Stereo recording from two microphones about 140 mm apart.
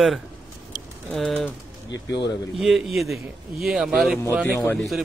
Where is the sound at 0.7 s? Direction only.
80° right.